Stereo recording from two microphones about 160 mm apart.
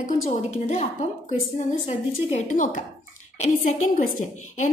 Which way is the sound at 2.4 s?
55° left (ahead or behind).